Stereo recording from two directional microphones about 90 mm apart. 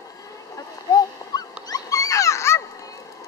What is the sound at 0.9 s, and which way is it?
Dog, 45° left (ahead or behind).